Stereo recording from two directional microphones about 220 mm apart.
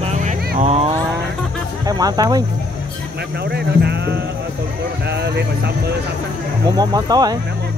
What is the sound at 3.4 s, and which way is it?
Speech, 50° right (ahead or behind).